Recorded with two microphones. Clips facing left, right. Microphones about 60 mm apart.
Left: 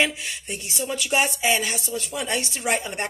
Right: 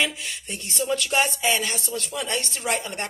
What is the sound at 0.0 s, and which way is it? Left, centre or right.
Speech, left.